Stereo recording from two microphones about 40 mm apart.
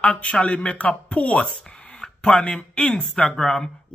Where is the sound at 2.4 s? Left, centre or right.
Left.